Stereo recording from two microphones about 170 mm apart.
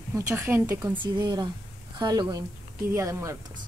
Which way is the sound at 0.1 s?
15° right (ahead or behind).